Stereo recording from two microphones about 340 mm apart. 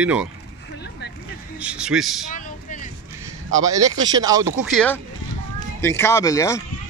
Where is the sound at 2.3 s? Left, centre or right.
Left.